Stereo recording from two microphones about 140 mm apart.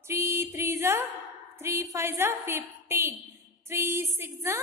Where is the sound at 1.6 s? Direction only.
20° right (ahead or behind).